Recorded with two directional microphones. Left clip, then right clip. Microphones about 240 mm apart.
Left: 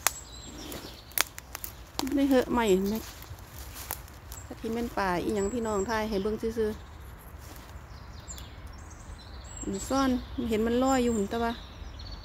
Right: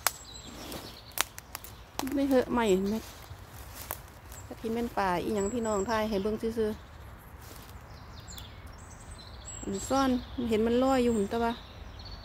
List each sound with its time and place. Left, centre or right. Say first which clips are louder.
1.1 s a sound: left 2 dB; centre
4.6 s a woman's voice: even; centre
9.8 s a woman's voice: even; centre